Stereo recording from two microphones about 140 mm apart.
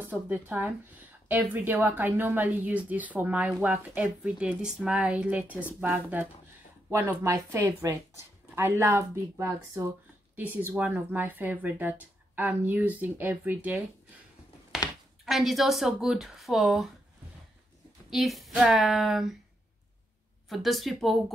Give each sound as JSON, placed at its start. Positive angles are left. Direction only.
{"t": 0.0, "sound": "speech", "side_deg": -10}
{"t": 14.7, "sound": "a sound", "side_deg": -5}
{"t": 15.2, "sound": "a woman's voice", "side_deg": 0}
{"t": 18.1, "sound": "a woman's voice", "side_deg": 0}
{"t": 20.4, "sound": "a woman's voice", "side_deg": 0}